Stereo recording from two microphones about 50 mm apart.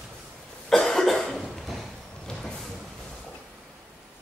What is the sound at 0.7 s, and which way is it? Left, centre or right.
Cough, centre.